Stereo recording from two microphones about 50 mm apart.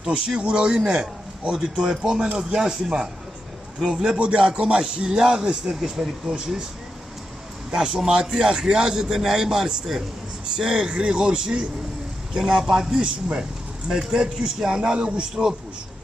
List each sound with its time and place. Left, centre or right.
0.0 s a man's voice: centre
7.7 s a man's voice: centre